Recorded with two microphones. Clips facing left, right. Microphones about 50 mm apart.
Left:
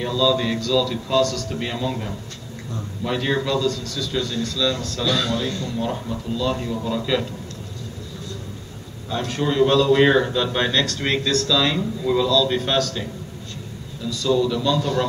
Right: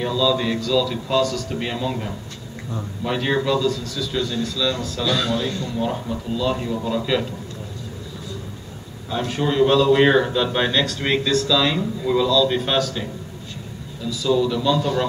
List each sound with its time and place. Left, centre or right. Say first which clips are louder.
0.0 s a man's voice: even; centre
9.1 s a man's voice: right 1 dB; centre